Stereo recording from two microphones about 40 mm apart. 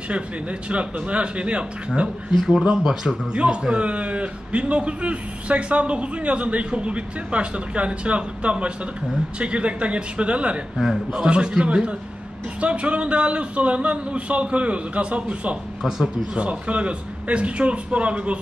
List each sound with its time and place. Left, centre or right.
0.1 s a man's voice: right
2.3 s a man's voice: centre
3.7 s a man's voice: right
10.8 s a man's voice: centre
11.2 s a man's voice: right